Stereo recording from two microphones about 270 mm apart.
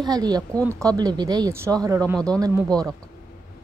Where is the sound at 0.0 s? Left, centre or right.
Centre.